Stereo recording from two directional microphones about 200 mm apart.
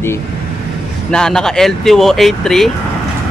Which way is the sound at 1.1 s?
5° left (ahead or behind).